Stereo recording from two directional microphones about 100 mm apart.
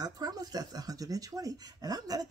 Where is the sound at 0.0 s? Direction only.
40° right (ahead or behind).